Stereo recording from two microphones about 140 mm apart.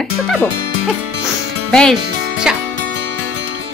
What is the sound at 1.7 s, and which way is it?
Speech, centre (ahead or behind).